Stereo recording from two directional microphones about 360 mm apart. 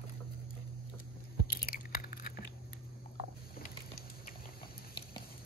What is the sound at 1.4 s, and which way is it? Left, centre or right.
Chewing, left.